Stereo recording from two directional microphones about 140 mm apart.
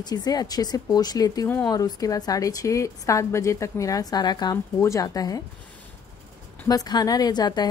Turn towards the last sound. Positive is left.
turn(degrees=30)  # may be behind; listen again after turning